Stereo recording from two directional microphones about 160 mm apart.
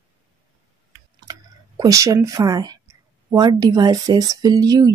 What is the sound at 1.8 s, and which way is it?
A woman's voice, 20° right (ahead or behind).